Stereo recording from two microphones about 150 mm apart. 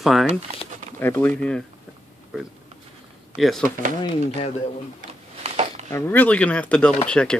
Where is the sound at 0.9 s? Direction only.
15° left (ahead or behind).